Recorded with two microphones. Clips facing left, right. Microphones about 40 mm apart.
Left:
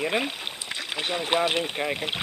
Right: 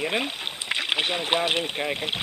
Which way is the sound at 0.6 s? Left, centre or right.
Right.